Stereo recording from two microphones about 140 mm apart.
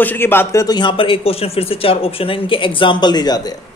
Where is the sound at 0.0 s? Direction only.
15° left (ahead or behind).